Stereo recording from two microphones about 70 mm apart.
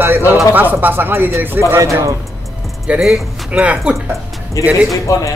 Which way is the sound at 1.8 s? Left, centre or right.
Right.